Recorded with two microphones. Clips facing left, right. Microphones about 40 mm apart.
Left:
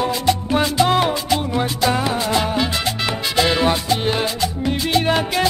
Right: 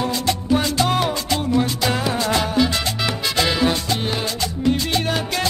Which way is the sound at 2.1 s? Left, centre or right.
Centre.